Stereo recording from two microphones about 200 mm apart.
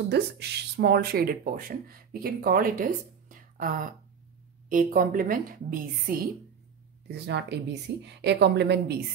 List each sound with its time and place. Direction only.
0.1 s speech: 55° right (ahead or behind)
7.1 s a woman's voice: 60° right (ahead or behind)